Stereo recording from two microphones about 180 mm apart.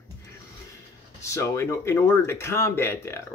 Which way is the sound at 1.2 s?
15° left (ahead or behind).